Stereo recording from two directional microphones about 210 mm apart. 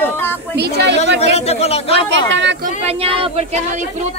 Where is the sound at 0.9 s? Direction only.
30° left (ahead or behind).